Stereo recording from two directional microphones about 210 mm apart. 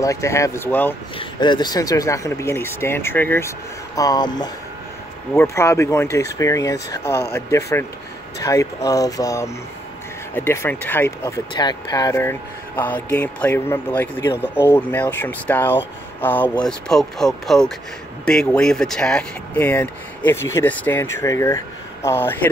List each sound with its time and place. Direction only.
0.0 s speech: 15° left (ahead or behind)
1.1 s speech: 20° left (ahead or behind)